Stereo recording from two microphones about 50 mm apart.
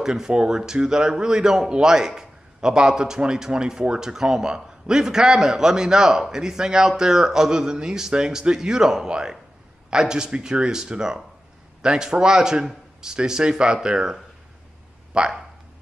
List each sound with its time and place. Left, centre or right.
0.0 s speech: centre